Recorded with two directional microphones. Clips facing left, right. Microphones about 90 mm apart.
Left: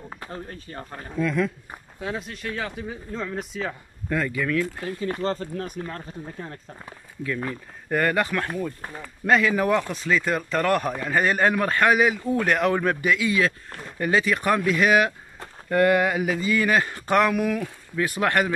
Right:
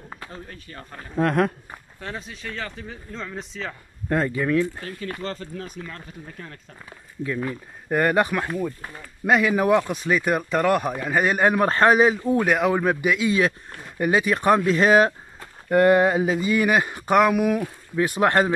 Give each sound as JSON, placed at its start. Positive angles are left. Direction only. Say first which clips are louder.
{"t": 0.5, "sound": "speech", "louder": "left 3 dB", "side_deg": 30}
{"t": 1.1, "sound": "speech", "louder": "right 3 dB", "side_deg": -60}
{"t": 1.7, "sound": "speech", "louder": "left 3 dB", "side_deg": 10}
{"t": 4.1, "sound": "speech", "louder": "right 3 dB", "side_deg": -35}
{"t": 4.8, "sound": "speech", "louder": "left 5 dB", "side_deg": 25}
{"t": 7.9, "sound": "speech", "louder": "right 2 dB", "side_deg": -20}
{"t": 12.4, "sound": "speech", "louder": "left 1 dB", "side_deg": -5}